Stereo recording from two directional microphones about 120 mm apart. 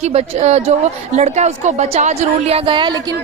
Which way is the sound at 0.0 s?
65° right (ahead or behind).